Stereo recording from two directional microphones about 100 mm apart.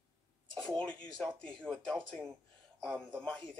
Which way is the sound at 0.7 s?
10° left (ahead or behind).